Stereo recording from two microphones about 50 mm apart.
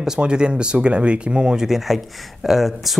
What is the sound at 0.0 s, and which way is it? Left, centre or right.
A man's voice, centre.